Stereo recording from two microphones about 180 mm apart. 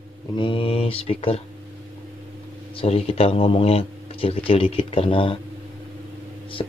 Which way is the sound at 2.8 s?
35° left (ahead or behind).